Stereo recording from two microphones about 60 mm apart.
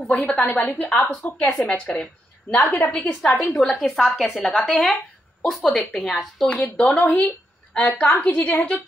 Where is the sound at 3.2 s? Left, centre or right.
Centre.